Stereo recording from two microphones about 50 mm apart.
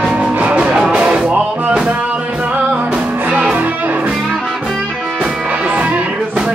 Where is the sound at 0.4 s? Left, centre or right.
Right.